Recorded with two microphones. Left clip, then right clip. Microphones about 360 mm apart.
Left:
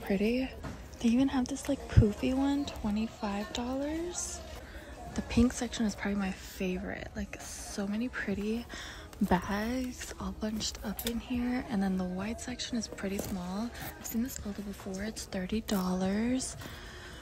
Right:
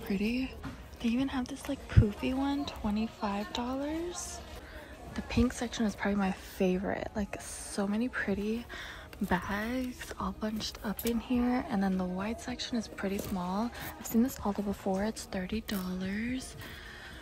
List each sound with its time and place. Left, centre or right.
0.1 s speech: centre